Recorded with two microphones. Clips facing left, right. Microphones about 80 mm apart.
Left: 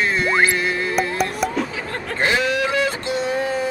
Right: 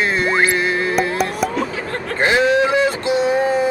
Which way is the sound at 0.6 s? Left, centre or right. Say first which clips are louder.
Right 3 dB; right.